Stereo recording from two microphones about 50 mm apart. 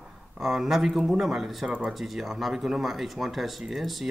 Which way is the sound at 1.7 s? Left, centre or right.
Centre.